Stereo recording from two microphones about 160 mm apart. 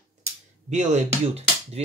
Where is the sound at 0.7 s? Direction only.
50° right (ahead or behind).